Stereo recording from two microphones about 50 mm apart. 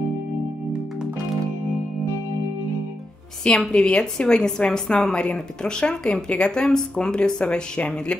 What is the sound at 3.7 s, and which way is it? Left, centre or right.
Speech, centre.